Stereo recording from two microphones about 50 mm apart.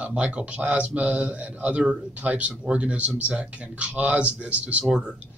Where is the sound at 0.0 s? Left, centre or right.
Right.